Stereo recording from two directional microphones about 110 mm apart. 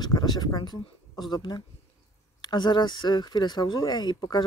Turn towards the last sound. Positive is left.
turn(degrees=40)  # may be behind; listen again after turning